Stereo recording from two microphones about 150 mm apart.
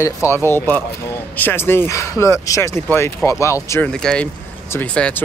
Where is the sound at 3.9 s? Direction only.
5° left (ahead or behind).